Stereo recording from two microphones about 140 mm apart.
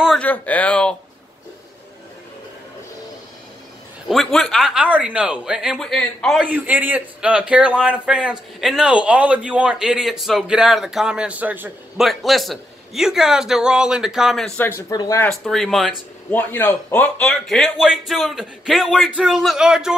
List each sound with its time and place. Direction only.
0.2 s speech: 10° left (ahead or behind)
4.1 s speech: centre (ahead or behind)
6.4 s a man's voice: 10° right (ahead or behind)
12.0 s speech: centre (ahead or behind)
14.6 s speech: 15° left (ahead or behind)
14.9 s speech: 25° left (ahead or behind)
15.2 s speech: centre (ahead or behind)
16.3 s speech: 15° left (ahead or behind); by 20.0 s 5° right (ahead or behind)